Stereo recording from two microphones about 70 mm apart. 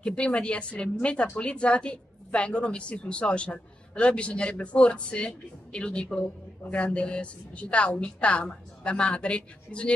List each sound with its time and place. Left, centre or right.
0.0 s a woman's voice: centre